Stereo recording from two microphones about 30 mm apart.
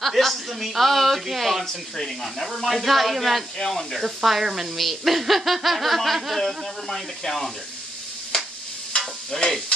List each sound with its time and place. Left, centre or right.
0.0 s a sound: centre
1.3 s speech: centre
2.0 s speech: centre
2.6 s speech: centre
3.5 s speech: centre
4.0 s speech: centre
4.7 s speech: centre
9.3 s speech: centre